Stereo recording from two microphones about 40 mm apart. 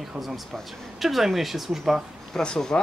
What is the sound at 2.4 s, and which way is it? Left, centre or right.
Speech, centre.